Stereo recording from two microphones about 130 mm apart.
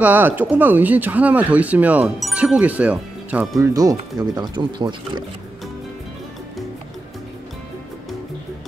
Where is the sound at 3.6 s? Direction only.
25° right (ahead or behind).